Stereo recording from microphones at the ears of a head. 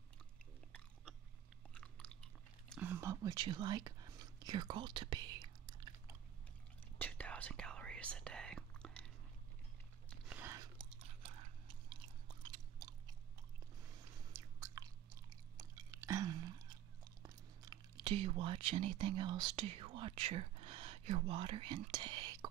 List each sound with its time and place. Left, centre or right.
1.7 s chewing: right
2.7 s whispering: right
7.6 s whispering: right
10.2 s chewing: right
17.2 s speech: right